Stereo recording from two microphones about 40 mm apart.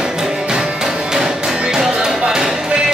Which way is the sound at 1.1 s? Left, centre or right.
Centre.